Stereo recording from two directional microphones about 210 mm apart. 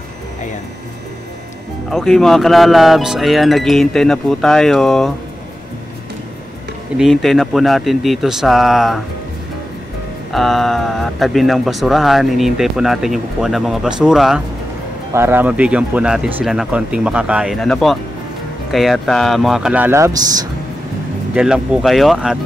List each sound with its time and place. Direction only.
1.9 s speech: centre (ahead or behind)
7.0 s speech: centre (ahead or behind)
10.3 s speech: centre (ahead or behind); by 20.4 s 20° right (ahead or behind)
21.4 s speech: centre (ahead or behind)